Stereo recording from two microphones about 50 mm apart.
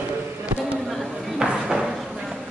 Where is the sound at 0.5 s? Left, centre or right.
Right.